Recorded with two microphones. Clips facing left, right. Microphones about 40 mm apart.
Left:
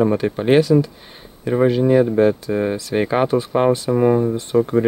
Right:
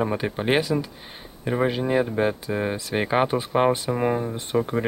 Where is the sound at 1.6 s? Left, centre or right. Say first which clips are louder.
Left 9 dB; centre.